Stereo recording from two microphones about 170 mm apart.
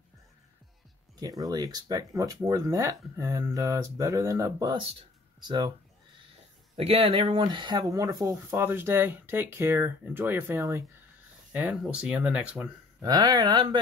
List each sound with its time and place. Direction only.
1.2 s speech: 20° right (ahead or behind)
6.8 s speech: 35° right (ahead or behind); by 12.7 s 5° right (ahead or behind)
13.0 s speech: 25° right (ahead or behind)